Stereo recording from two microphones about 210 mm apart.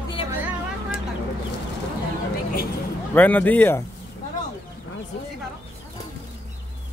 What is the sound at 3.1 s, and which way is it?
Speech, 10° left (ahead or behind).